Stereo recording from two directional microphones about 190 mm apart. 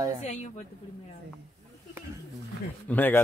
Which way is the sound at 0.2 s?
40° left (ahead or behind).